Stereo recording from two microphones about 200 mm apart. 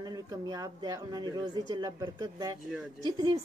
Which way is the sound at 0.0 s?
20° right (ahead or behind).